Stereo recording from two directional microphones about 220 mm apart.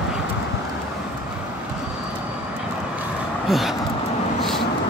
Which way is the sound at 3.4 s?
Centre (ahead or behind).